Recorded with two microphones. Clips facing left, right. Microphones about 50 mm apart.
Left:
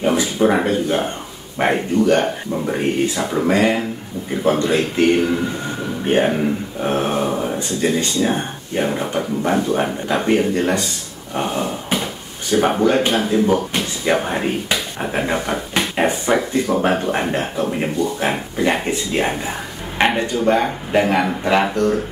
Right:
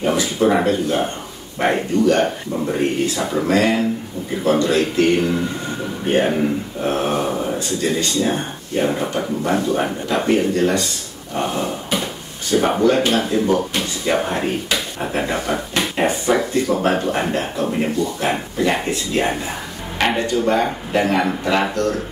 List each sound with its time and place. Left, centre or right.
0.0 s speech: centre
1.6 s speech: left
2.1 s speech: centre
7.5 s speech: centre
8.1 s speech: centre
9.4 s speech: centre
11.3 s drawer open or close: centre
12.8 s speech: centre
18.6 s speech: left
19.1 s speech: centre